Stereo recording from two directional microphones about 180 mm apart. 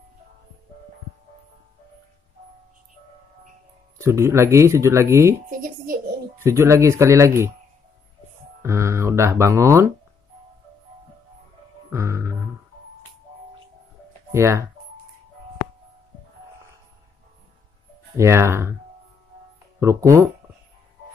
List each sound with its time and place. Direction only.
4.0 s speech: 15° right (ahead or behind)
6.4 s speech: 15° right (ahead or behind)
8.6 s speech: 15° right (ahead or behind)
11.9 s music: 15° right (ahead or behind)
14.3 s speech: 15° right (ahead or behind)
18.1 s speech: 15° right (ahead or behind)
19.8 s speech: 15° right (ahead or behind)